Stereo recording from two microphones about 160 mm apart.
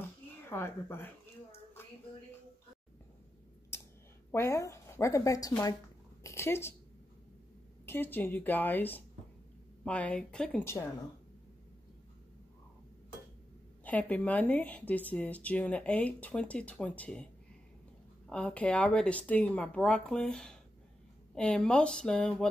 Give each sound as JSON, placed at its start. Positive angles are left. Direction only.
{"t": 0.5, "sound": "a woman's voice", "side_deg": 15}
{"t": 4.3, "sound": "speech", "side_deg": 15}
{"t": 7.8, "sound": "speech", "side_deg": 15}
{"t": 10.6, "sound": "speech", "side_deg": 15}
{"t": 13.8, "sound": "speech", "side_deg": 10}